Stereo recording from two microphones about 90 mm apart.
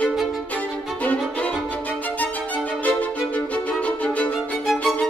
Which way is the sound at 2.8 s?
15° left (ahead or behind).